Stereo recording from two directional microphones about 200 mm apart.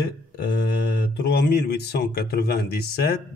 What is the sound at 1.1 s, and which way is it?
Speech, 55° left (ahead or behind).